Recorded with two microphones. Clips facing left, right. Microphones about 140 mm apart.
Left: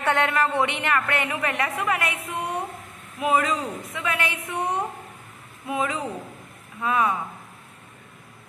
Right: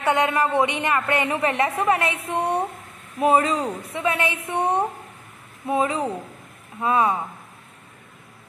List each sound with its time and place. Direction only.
0.0 s a woman's voice: 15° right (ahead or behind)